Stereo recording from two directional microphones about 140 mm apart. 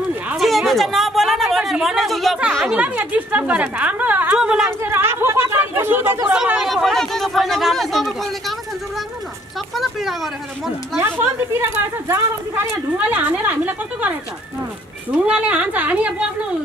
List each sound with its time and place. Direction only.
0.4 s speech: centre (ahead or behind)
4.8 s chatter: 15° right (ahead or behind)
6.2 s speech: 10° right (ahead or behind)
9.8 s speech: centre (ahead or behind)
11.0 s speech: 15° right (ahead or behind)
15.1 s speech: 10° right (ahead or behind)